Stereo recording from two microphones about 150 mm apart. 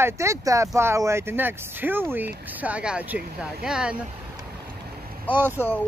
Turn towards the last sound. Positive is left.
turn(degrees=-15)  # may be behind; listen again after turning